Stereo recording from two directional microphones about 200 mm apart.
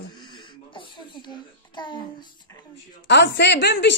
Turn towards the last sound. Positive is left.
turn(degrees=60)  # may be behind; listen again after turning